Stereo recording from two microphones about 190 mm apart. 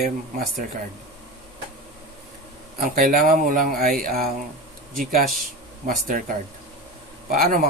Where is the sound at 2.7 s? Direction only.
50° right (ahead or behind).